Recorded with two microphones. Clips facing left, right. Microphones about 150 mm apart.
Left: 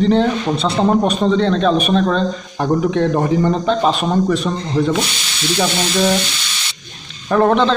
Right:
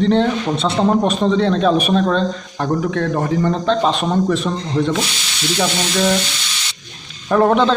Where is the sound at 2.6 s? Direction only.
20° left (ahead or behind); by 4.9 s centre (ahead or behind).